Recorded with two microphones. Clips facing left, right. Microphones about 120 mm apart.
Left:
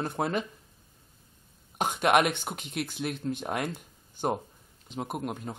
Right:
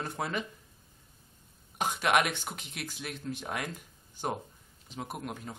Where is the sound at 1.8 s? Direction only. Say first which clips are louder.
Left 4 dB; 50° left (ahead or behind).